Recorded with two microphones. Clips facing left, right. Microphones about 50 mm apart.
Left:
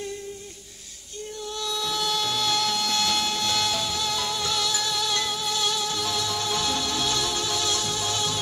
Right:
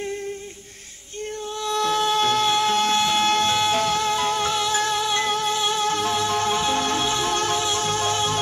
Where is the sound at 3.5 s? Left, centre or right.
Right.